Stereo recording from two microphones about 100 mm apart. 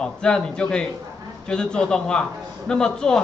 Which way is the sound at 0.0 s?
10° left (ahead or behind).